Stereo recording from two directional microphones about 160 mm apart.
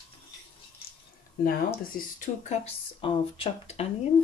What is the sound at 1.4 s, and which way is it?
Speech, 60° left (ahead or behind).